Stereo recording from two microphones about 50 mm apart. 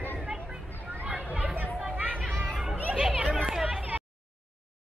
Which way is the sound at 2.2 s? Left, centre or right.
Centre.